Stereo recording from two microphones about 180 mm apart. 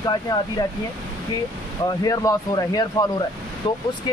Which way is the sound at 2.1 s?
20° left (ahead or behind).